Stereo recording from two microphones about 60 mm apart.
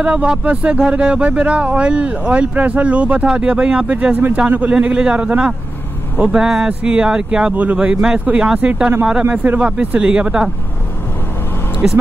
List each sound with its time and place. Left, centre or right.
0.0 s speech: centre
6.4 s speech: centre
11.8 s speech: centre